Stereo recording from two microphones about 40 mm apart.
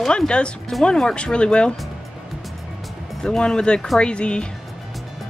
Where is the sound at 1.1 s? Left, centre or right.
Left.